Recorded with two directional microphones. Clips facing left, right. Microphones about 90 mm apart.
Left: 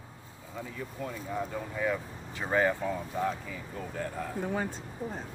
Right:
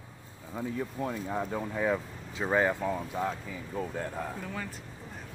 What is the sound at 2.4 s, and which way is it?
Speech, 10° right (ahead or behind).